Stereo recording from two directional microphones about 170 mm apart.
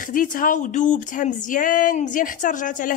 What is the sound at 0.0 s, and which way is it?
Speech, 55° left (ahead or behind).